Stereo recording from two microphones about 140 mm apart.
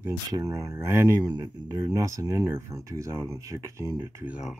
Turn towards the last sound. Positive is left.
turn(degrees=-10)  # may be behind; listen again after turning